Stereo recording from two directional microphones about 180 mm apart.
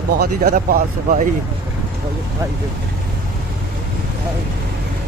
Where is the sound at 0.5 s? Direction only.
55° right (ahead or behind).